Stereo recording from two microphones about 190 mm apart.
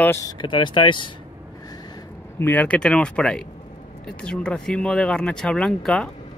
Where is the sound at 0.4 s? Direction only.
25° left (ahead or behind).